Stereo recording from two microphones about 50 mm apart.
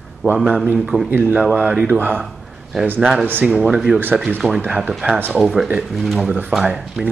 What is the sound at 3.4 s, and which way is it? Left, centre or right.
Speech, centre.